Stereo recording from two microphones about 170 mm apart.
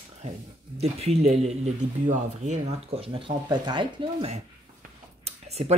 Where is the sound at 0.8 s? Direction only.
40° right (ahead or behind).